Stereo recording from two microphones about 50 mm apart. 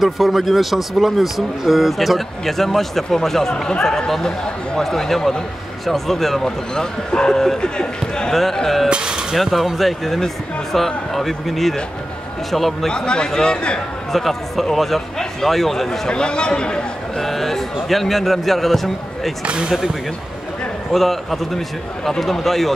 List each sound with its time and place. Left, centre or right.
0.0 s speech: centre
8.8 s a sound: centre
9.3 s speech: centre
12.9 s speech: centre
14.1 s speech: centre
17.2 s speech: centre